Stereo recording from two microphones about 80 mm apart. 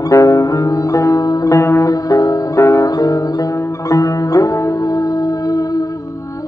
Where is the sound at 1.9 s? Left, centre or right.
Left.